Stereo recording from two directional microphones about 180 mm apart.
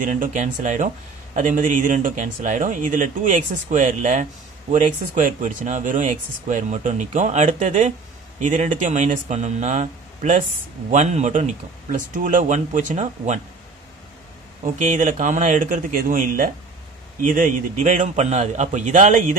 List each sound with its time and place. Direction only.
0.0 s speech: 45° right (ahead or behind)
14.6 s speech: 45° right (ahead or behind)